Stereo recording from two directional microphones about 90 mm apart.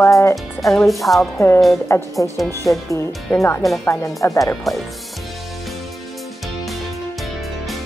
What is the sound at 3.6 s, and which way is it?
Speech, centre (ahead or behind).